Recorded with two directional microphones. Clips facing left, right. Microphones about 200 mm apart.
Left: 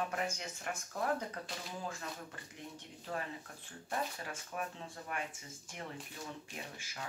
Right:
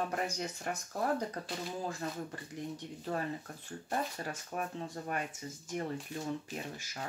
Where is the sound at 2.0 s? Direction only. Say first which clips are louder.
Right 6 dB; 35° right (ahead or behind).